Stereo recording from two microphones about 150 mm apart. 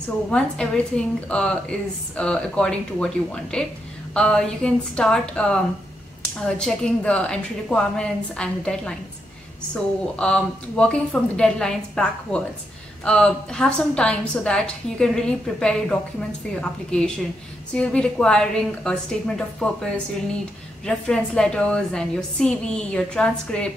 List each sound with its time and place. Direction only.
0.3 s a woman's voice: 5° left (ahead or behind)
10.1 s a woman's voice: 5° left (ahead or behind)